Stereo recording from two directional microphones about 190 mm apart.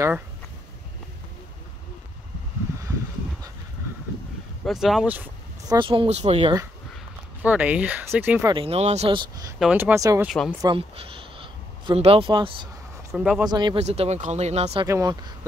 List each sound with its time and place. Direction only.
4.6 s speech: centre (ahead or behind)
5.7 s speech: 25° right (ahead or behind)
7.4 s speech: 10° right (ahead or behind)
8.5 s speech: 35° right (ahead or behind)
9.6 s speech: 5° right (ahead or behind)
10.2 s speech: centre (ahead or behind)
10.6 s speech: 25° right (ahead or behind)
13.1 s speech: 5° right (ahead or behind)
13.5 s speech: 25° right (ahead or behind)
13.8 s speech: 35° right (ahead or behind)
14.9 s speech: 20° right (ahead or behind)